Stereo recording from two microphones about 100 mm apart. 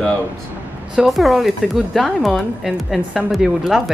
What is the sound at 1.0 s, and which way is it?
Speech, centre (ahead or behind).